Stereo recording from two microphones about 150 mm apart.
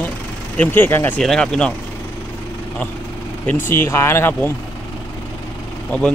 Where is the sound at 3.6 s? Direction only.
15° left (ahead or behind).